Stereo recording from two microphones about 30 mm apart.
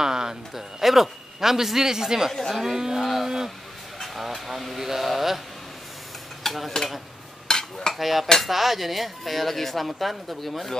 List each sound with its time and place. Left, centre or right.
0.0 s a man's voice: right
3.0 s a sound: centre
4.2 s a man's voice: centre
6.4 s stir: centre
7.4 s cutlery: left
7.9 s speech: centre